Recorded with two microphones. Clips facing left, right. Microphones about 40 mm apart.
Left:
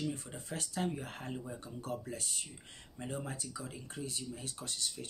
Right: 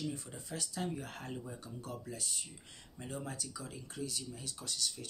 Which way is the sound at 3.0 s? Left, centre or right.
Left.